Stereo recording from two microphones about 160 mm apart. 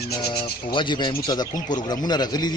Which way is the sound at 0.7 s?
30° left (ahead or behind).